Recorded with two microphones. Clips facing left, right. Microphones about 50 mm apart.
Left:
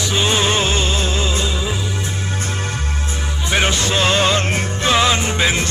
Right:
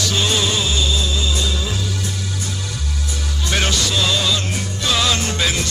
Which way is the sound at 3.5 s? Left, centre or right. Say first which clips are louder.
Left 3 dB; left.